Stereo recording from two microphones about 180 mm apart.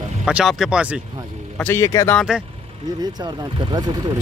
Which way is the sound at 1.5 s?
10° left (ahead or behind).